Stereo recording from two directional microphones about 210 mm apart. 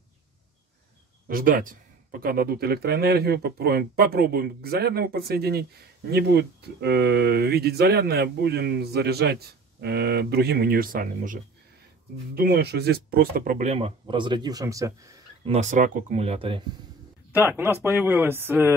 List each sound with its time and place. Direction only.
1.2 s speech: 45° right (ahead or behind)
12.4 s speech: 45° right (ahead or behind); by 15.2 s 15° right (ahead or behind)
15.4 s speech: 30° right (ahead or behind)
17.3 s speech: 10° right (ahead or behind)